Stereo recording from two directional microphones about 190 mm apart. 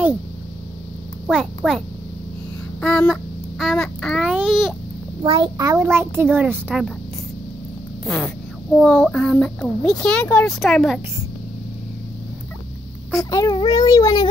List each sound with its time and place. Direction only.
1.2 s a child's voice: centre (ahead or behind)
2.8 s a child's voice: 5° left (ahead or behind)
5.2 s a child's voice: 25° right (ahead or behind); by 6.9 s 5° right (ahead or behind)
8.0 s a child's voice: 5° left (ahead or behind)
13.3 s a child's voice: 20° left (ahead or behind)